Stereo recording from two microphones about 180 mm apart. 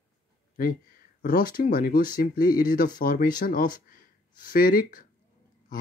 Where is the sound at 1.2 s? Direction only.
55° left (ahead or behind).